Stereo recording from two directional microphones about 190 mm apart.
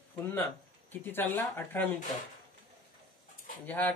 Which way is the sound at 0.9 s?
10° left (ahead or behind).